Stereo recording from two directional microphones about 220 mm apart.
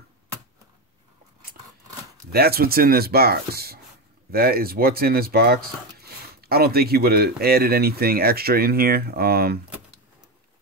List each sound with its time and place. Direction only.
2.3 s speech: 45° right (ahead or behind)